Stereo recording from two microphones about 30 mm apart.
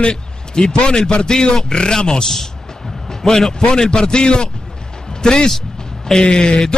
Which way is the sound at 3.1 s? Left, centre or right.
Centre.